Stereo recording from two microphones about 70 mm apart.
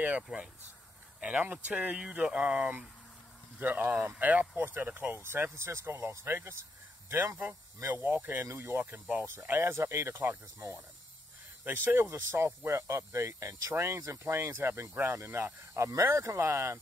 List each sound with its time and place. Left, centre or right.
0.3 s speech: centre
1.2 s speech: right
3.5 s speech: right
7.4 s speech: right
8.5 s speech: right